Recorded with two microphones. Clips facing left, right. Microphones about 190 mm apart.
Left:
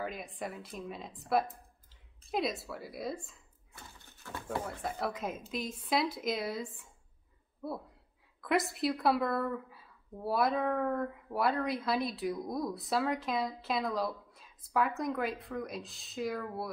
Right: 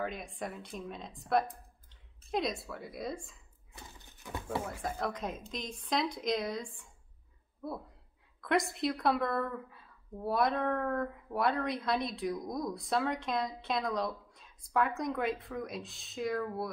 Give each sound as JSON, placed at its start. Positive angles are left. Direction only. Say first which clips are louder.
{"t": 0.0, "sound": "a woman's voice", "louder": "right 1 dB", "side_deg": 0}
{"t": 3.7, "sound": "a sound", "louder": "right 1 dB", "side_deg": -15}
{"t": 4.5, "sound": "a woman's voice", "louder": "even", "side_deg": -5}